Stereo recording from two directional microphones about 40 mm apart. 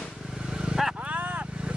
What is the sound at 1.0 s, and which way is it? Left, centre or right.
Vehicle, right.